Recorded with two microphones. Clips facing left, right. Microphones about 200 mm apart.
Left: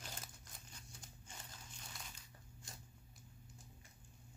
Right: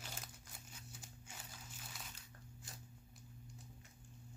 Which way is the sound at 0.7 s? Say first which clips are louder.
Right 2 dB; 5° right (ahead or behind).